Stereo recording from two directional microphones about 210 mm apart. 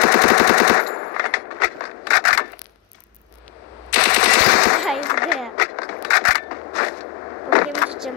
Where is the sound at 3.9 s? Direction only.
55° left (ahead or behind).